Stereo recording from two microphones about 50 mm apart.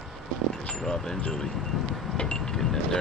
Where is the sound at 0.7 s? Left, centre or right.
Centre.